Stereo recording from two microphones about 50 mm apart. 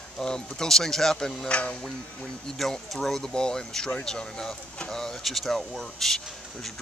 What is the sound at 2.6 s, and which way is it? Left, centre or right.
Speech, centre.